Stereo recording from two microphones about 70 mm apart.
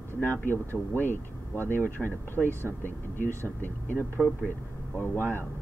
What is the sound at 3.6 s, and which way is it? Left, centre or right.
Speech, left.